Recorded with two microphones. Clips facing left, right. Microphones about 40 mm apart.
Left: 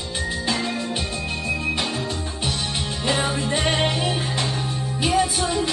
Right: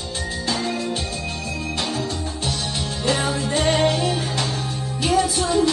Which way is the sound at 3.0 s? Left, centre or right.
Left.